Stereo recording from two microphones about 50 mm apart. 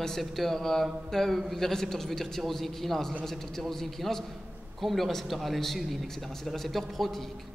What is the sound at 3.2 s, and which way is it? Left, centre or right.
A man's voice, centre.